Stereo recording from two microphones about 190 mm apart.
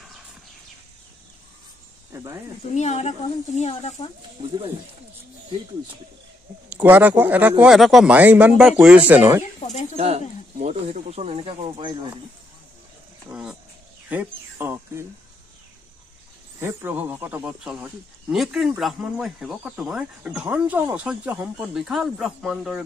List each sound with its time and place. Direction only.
2.1 s speech: 15° right (ahead or behind)
2.7 s speech: 35° left (ahead or behind)
4.4 s speech: 30° right (ahead or behind)
6.7 s speech: 10° right (ahead or behind)
9.4 s speech: 35° left (ahead or behind)
9.9 s speech: 35° right (ahead or behind)
13.3 s speech: 5° right (ahead or behind)
16.5 s speech: 10° right (ahead or behind)